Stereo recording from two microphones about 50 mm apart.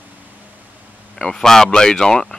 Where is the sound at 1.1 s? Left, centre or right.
Centre.